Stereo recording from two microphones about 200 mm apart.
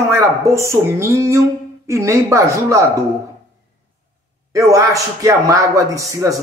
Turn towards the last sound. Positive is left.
turn(degrees=-15)  # may be behind; listen again after turning